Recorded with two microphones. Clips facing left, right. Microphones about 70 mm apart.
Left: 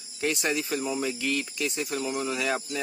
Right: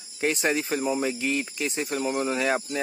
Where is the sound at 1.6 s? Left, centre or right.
Right.